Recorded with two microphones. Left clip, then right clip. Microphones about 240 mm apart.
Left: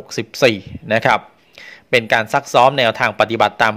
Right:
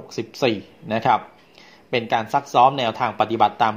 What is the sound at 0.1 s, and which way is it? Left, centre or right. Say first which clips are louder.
Speech: left 7 dB; left.